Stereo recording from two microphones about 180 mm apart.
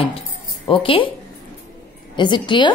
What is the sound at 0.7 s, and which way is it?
Speech, 30° left (ahead or behind).